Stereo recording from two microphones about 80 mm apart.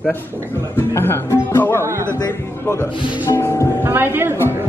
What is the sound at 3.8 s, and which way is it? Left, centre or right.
Speech, right.